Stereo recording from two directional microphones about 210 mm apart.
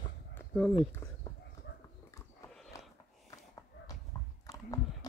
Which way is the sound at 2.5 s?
Centre (ahead or behind).